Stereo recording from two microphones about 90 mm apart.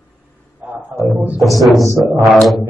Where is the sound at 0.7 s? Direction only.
10° right (ahead or behind).